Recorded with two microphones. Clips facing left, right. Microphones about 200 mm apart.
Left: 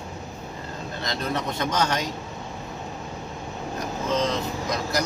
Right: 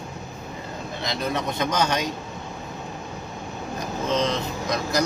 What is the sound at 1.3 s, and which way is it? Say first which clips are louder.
Speech: right 1 dB; 15° right (ahead or behind).